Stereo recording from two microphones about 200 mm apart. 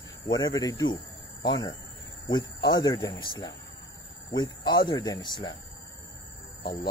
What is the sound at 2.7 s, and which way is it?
Speech, 20° left (ahead or behind).